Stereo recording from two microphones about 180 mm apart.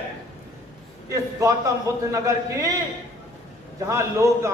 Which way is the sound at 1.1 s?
20° right (ahead or behind).